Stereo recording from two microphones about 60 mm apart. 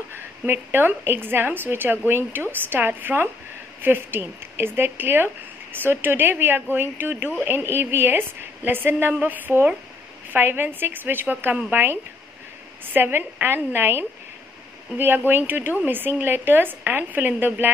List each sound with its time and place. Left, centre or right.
0.5 s speech: right
15.0 s speech: right